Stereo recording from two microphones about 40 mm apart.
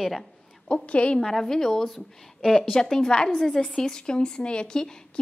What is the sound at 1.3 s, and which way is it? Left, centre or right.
A woman's voice, centre.